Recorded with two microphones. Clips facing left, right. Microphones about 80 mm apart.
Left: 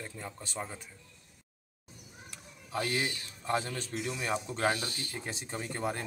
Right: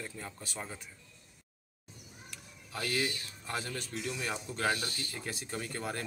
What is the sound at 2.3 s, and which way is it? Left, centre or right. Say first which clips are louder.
Speech: left 7 dB; left.